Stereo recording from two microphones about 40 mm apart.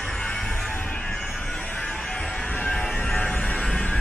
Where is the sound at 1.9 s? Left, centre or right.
Centre.